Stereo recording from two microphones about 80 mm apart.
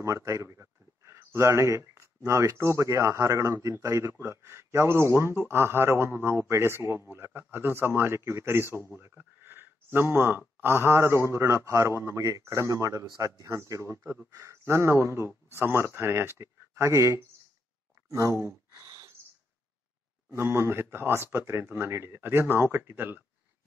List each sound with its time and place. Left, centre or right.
0.0 s speech: right
9.0 s a sound: right
10.6 s speech: right
20.3 s speech: right